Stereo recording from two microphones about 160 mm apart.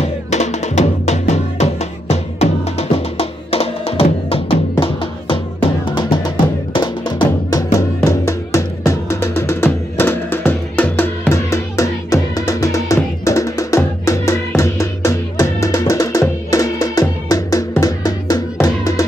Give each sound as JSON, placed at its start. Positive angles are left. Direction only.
{"t": 0.3, "sound": "music", "side_deg": 45}